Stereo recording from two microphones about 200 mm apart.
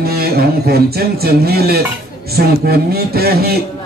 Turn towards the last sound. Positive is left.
turn(degrees=-50)  # may be behind; listen again after turning